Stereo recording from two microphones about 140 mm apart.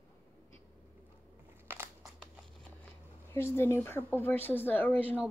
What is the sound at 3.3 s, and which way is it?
Speech, 15° left (ahead or behind).